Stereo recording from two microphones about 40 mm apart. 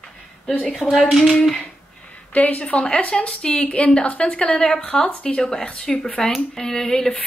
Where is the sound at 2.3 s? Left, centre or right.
Left.